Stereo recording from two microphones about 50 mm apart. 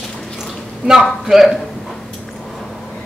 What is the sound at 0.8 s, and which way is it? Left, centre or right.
Speech, right.